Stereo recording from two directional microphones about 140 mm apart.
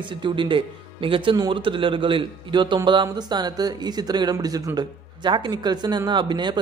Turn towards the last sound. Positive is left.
turn(degrees=-35)  # may be behind; listen again after turning